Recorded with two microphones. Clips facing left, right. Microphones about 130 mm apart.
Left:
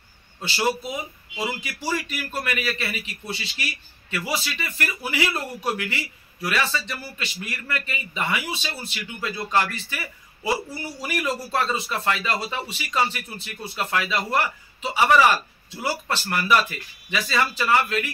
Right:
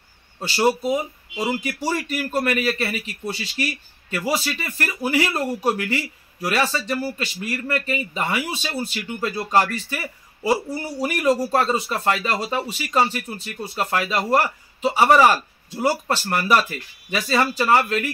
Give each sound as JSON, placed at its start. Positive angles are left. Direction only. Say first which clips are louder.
{"t": 0.4, "sound": "a man's voice", "louder": "right 5 dB", "side_deg": -40}